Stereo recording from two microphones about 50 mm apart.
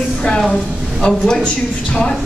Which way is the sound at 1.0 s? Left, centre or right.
Centre.